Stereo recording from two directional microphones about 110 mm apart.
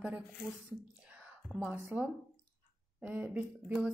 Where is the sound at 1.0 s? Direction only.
10° right (ahead or behind).